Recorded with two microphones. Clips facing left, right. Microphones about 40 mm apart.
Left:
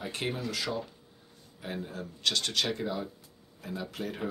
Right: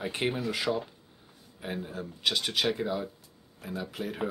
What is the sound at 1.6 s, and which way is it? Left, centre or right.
Speech, centre.